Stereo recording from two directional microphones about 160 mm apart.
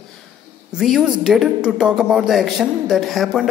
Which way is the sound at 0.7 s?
5° right (ahead or behind).